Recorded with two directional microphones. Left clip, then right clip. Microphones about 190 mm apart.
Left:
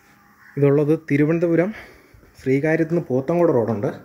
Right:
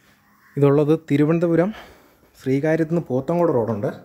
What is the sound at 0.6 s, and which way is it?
Speech, 20° right (ahead or behind).